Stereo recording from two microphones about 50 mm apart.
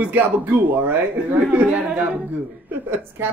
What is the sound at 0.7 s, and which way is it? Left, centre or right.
Speech, right.